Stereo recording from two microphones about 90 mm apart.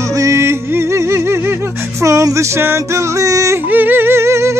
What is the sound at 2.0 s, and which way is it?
Music, 35° right (ahead or behind).